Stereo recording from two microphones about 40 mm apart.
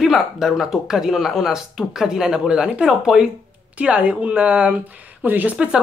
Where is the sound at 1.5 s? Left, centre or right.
Centre.